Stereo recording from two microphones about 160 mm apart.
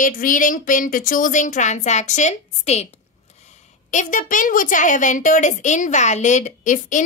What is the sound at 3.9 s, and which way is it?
A woman's voice, 50° left (ahead or behind).